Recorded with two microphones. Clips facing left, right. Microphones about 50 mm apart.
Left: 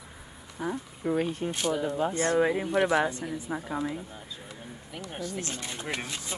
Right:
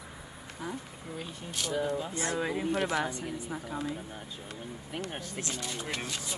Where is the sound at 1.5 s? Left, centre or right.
Left.